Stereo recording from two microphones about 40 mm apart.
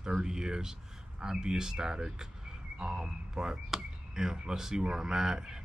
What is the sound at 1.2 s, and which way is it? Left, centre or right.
Speech, centre.